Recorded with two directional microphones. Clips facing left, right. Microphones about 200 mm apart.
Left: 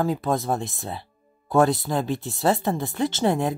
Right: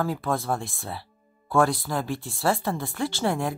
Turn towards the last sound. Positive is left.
turn(degrees=20)  # may be behind; listen again after turning